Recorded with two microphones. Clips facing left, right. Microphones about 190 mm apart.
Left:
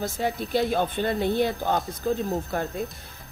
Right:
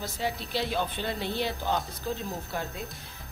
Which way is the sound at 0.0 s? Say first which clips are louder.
Left 5 dB; 50° left (ahead or behind).